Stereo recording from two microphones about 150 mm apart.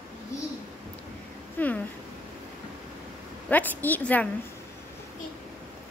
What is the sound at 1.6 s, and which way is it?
Speech, 10° left (ahead or behind).